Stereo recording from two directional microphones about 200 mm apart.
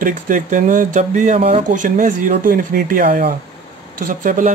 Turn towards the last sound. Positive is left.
turn(degrees=-40)  # may be behind; listen again after turning